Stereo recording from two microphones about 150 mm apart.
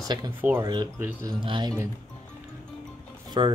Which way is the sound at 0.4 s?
15° right (ahead or behind).